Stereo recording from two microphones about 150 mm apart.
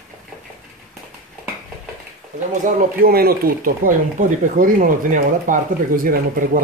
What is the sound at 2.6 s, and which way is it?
Speech, 75° right (ahead or behind).